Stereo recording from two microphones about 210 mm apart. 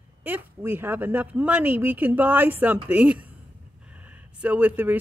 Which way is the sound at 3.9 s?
5° right (ahead or behind).